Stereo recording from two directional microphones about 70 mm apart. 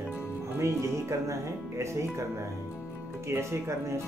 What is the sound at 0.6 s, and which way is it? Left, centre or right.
Speech, right.